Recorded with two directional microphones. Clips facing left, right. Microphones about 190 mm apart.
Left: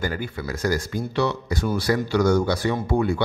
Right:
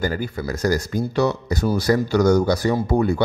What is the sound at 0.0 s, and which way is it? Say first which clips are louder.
Speech: right 4 dB; 40° right (ahead or behind).